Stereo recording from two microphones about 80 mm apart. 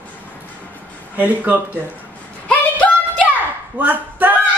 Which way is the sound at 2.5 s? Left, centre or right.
Centre.